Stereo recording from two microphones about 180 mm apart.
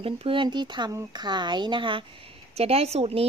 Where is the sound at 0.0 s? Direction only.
30° right (ahead or behind).